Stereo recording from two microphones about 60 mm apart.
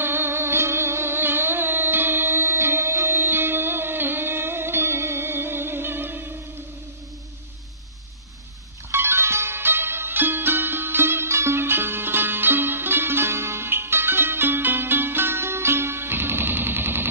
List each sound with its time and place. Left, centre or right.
0.0 s music: right
8.9 s music: right